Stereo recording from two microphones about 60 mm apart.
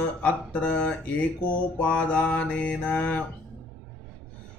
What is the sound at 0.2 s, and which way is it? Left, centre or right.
Speech, left.